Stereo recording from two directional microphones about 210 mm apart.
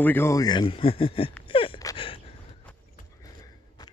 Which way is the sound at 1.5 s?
25° left (ahead or behind).